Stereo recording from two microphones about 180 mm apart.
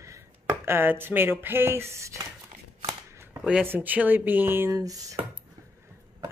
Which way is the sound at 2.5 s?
30° right (ahead or behind).